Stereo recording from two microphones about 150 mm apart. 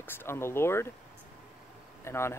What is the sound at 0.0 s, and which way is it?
Speech, 15° left (ahead or behind).